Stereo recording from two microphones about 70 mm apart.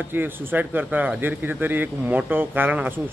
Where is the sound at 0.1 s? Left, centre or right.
Right.